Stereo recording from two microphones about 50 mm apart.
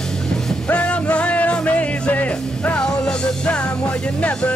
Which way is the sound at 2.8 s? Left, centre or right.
Centre.